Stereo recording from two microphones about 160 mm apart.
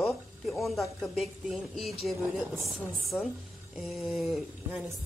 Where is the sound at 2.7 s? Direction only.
Centre (ahead or behind).